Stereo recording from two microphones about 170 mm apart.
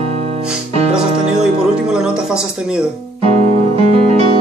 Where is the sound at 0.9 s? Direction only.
5° right (ahead or behind).